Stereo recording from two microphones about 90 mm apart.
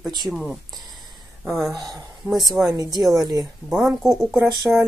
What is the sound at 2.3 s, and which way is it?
Speech, centre (ahead or behind).